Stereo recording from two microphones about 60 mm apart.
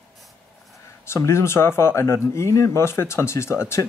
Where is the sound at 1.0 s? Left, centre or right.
Left.